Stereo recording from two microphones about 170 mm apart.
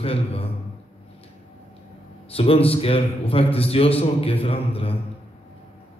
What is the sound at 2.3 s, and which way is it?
A man's voice, 35° left (ahead or behind).